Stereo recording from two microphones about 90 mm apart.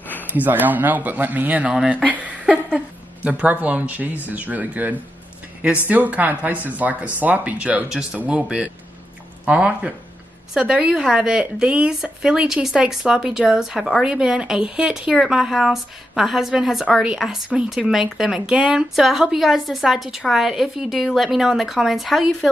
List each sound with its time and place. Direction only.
0.2 s speech: 20° right (ahead or behind)
1.8 s speech: 5° right (ahead or behind)
2.2 s a sound: 15° right (ahead or behind)
3.3 s a woman's voice: 15° right (ahead or behind); by 22.5 s centre (ahead or behind)